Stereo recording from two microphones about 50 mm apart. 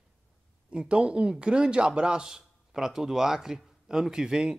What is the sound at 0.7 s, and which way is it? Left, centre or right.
A man's voice, right.